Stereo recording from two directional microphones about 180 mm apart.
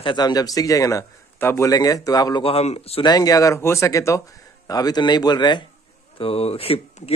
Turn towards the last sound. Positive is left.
turn(degrees=35)  # may be behind; listen again after turning